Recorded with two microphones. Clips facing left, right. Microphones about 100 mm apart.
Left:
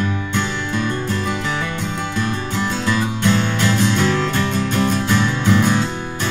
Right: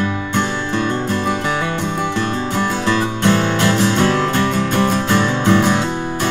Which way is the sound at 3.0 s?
50° right (ahead or behind).